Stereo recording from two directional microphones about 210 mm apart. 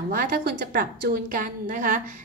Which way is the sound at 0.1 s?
45° right (ahead or behind).